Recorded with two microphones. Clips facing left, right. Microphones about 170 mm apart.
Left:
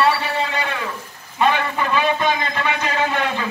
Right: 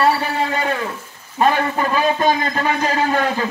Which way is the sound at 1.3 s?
40° right (ahead or behind).